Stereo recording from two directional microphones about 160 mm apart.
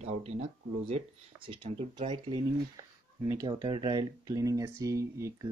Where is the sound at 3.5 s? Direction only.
30° right (ahead or behind).